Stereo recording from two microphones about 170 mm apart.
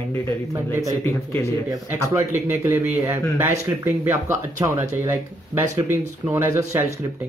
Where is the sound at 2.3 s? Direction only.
15° right (ahead or behind).